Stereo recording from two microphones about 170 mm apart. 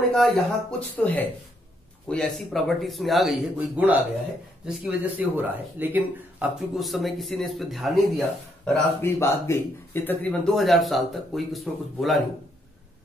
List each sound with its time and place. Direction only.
0.1 s speech: centre (ahead or behind)
6.7 s speech: centre (ahead or behind)
9.2 s speech: 15° left (ahead or behind); by 12.2 s centre (ahead or behind)